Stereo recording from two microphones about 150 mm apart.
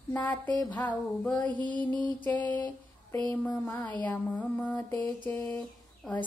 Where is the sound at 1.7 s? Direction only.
30° right (ahead or behind).